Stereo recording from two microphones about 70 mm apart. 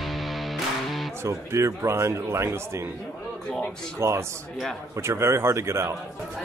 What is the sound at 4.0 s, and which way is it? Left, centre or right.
Speech, right.